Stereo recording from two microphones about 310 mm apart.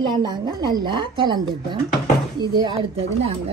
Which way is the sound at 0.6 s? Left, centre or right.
Centre.